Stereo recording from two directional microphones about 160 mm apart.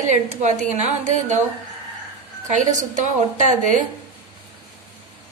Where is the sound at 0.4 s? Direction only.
50° right (ahead or behind).